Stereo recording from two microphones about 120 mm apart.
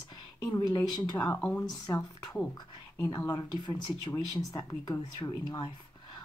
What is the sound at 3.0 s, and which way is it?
Speech, 30° left (ahead or behind).